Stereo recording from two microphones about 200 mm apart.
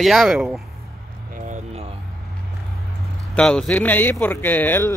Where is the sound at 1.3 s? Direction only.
40° right (ahead or behind).